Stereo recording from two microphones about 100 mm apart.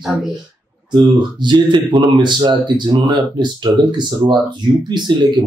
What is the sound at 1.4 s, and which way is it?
Speech, 50° right (ahead or behind).